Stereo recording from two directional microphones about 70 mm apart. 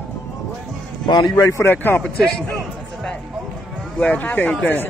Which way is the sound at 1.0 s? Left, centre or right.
Left.